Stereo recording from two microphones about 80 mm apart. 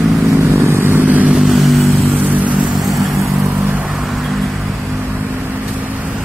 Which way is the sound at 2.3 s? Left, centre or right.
Centre.